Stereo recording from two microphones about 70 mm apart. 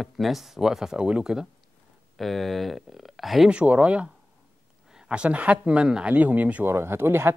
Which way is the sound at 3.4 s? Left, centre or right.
Centre.